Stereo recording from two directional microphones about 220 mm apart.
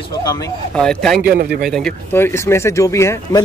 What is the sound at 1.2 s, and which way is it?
Speech, 45° right (ahead or behind).